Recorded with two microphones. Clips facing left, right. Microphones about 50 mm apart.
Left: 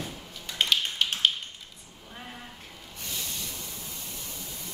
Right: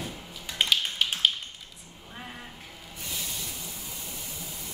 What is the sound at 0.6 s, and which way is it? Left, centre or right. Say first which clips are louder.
Tap: even; centre.